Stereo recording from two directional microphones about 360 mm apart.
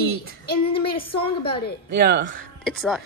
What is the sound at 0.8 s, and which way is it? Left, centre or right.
Speech, centre.